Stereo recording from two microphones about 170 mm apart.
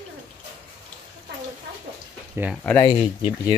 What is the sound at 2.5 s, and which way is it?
Speech, 5° left (ahead or behind).